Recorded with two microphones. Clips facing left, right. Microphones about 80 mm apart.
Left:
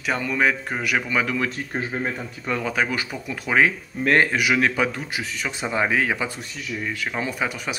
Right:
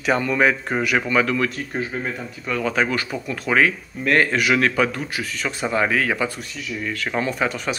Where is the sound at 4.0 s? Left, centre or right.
Left.